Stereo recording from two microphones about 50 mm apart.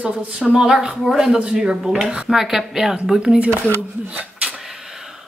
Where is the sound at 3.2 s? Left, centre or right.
Centre.